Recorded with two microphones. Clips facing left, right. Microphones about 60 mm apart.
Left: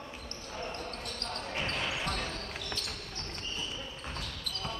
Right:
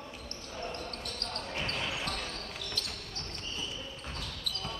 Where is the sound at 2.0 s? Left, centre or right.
Left.